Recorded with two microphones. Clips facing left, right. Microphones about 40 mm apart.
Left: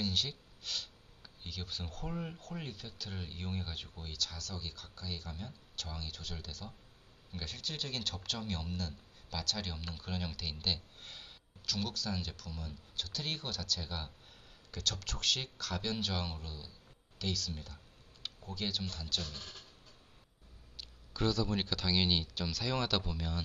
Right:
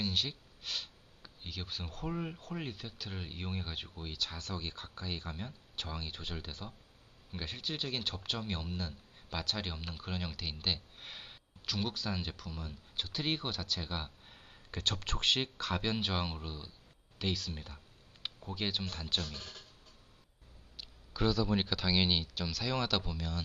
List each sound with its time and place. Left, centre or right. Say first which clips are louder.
0.0 s speech: right 1 dB; centre; by 19.2 s right
20.7 s speech: right 1 dB; centre